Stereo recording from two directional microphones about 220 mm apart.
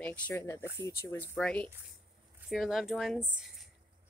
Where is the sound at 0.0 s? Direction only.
10° left (ahead or behind).